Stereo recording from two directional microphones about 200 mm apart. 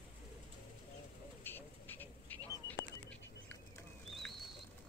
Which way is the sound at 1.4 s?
10° left (ahead or behind).